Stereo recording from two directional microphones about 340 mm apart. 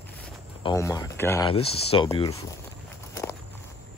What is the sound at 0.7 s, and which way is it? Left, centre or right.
Speech, centre.